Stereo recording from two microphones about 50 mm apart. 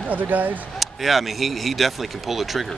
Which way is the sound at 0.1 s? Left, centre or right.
Right.